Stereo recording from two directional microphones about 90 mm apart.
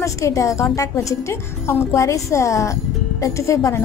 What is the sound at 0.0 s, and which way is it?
A woman's voice, 35° left (ahead or behind).